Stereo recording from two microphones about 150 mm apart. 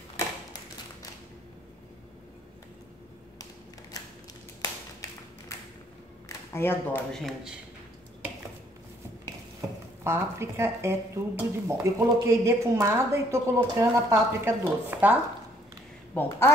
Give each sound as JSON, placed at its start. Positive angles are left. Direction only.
{"t": 6.2, "sound": "a sound", "side_deg": 15}
{"t": 7.1, "sound": "a man's voice", "side_deg": 0}
{"t": 10.0, "sound": "speech", "side_deg": -15}
{"t": 16.2, "sound": "a woman's voice", "side_deg": 15}